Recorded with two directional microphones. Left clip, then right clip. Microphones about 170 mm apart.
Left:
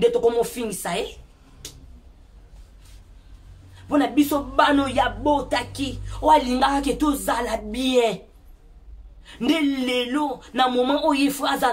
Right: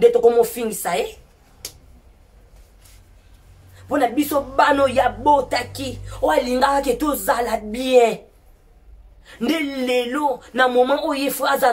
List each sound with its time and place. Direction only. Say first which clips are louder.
0.0 s speech: right 5 dB; 15° left (ahead or behind)
3.9 s speech: right 2 dB; 15° left (ahead or behind)
9.2 s speech: even; 15° left (ahead or behind)